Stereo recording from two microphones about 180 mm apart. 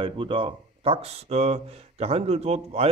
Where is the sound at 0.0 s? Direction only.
30° right (ahead or behind).